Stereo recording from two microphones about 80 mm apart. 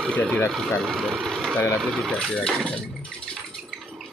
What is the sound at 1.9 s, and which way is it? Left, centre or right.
Speech, centre.